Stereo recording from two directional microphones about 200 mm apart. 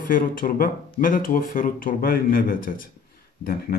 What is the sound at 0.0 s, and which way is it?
Speech, 45° left (ahead or behind).